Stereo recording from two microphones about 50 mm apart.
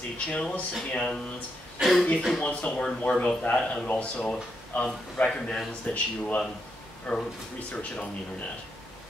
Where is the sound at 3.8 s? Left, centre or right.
Left.